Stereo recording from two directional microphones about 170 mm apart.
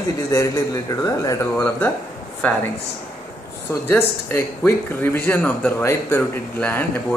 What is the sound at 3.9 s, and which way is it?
A man's voice, 15° left (ahead or behind).